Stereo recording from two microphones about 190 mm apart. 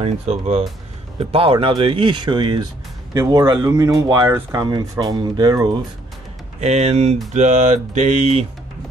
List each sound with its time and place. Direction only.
0.0 s mantra: 35° right (ahead or behind)
1.3 s speech: 30° right (ahead or behind)
6.6 s mantra: 35° right (ahead or behind)